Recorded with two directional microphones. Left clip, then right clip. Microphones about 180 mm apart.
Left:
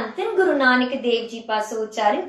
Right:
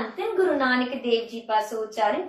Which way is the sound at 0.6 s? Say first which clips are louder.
Left 6 dB; 15° left (ahead or behind).